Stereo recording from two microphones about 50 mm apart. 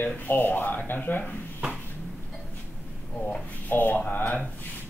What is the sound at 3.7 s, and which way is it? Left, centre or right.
Speech, left.